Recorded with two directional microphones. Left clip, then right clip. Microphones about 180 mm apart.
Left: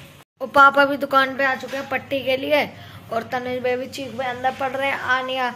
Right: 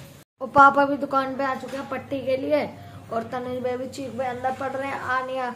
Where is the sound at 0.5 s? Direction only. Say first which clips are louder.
Left 2 dB; 5° right (ahead or behind).